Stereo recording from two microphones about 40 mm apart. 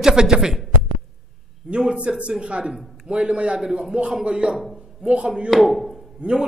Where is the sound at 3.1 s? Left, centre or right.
Right.